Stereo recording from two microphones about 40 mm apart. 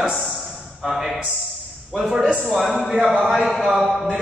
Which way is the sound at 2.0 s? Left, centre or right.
Centre.